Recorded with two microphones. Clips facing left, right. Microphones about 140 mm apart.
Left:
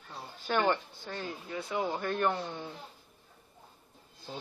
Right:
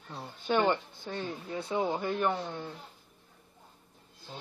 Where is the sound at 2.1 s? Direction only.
Centre (ahead or behind).